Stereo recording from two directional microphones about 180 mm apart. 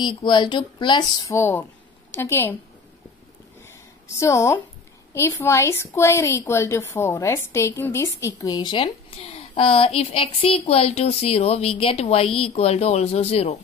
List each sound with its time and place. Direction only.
0.0 s a woman's voice: 25° left (ahead or behind)
4.2 s a woman's voice: 15° left (ahead or behind); by 13.6 s 35° left (ahead or behind)